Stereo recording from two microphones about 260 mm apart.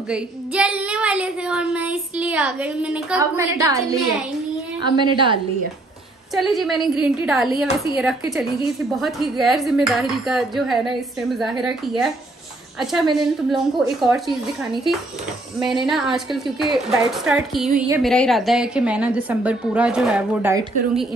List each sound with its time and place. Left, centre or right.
0.1 s a woman's voice: centre
4.9 s a woman's voice: centre
6.3 s a woman's voice: centre
12.9 s a woman's voice: centre
15.6 s a woman's voice: centre